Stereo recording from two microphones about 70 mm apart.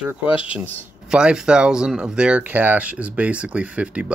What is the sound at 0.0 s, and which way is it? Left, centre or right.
Speech, centre.